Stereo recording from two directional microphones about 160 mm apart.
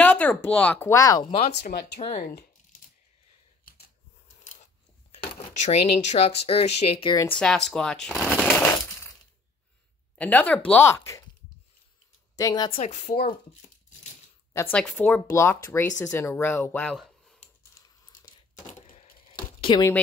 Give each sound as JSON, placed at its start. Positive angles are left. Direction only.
{"t": 0.0, "sound": "speech", "side_deg": 10}
{"t": 1.5, "sound": "speech", "side_deg": 90}
{"t": 2.1, "sound": "speech", "side_deg": 75}
{"t": 3.6, "sound": "computer keyboard", "side_deg": 75}
{"t": 5.6, "sound": "speech", "side_deg": 45}
{"t": 7.3, "sound": "speech", "side_deg": 0}
{"t": 8.5, "sound": "a sound", "side_deg": 15}
{"t": 10.1, "sound": "speech", "side_deg": 10}
{"t": 12.4, "sound": "a woman's voice", "side_deg": 25}
{"t": 12.7, "sound": "speech", "side_deg": 45}
{"t": 14.5, "sound": "speech", "side_deg": 15}
{"t": 16.9, "sound": "a sound", "side_deg": 0}
{"t": 18.7, "sound": "typewriter", "side_deg": 40}
{"t": 19.6, "sound": "speech", "side_deg": 25}